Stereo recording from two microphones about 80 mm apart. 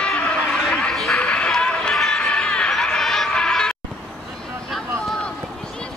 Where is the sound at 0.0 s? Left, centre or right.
Centre.